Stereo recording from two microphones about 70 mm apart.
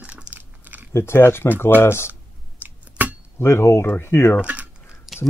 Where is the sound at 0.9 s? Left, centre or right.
Left.